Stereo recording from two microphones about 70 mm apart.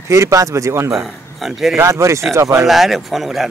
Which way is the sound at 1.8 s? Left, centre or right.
Right.